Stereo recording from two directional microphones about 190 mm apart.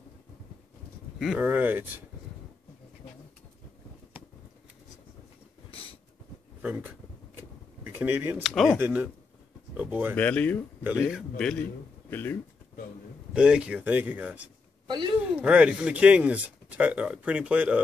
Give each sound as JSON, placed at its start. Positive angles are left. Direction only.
{"t": 1.2, "sound": "speech", "side_deg": -5}
{"t": 6.6, "sound": "speech", "side_deg": -10}
{"t": 10.1, "sound": "a man's voice", "side_deg": 10}
{"t": 13.3, "sound": "speech", "side_deg": -5}
{"t": 14.9, "sound": "a sound", "side_deg": -25}
{"t": 15.2, "sound": "speech", "side_deg": -5}